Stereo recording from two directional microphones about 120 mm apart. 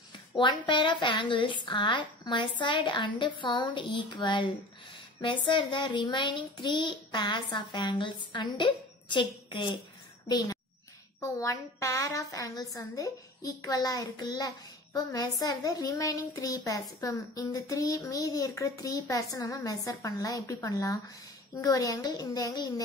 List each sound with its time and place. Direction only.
0.4 s a child's voice: 40° left (ahead or behind)